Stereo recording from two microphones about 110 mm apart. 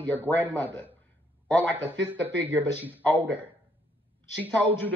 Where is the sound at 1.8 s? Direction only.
15° right (ahead or behind).